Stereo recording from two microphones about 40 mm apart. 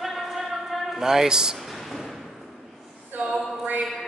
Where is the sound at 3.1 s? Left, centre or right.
Right.